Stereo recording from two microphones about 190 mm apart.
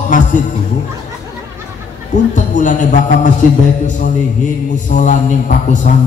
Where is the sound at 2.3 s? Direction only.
40° left (ahead or behind).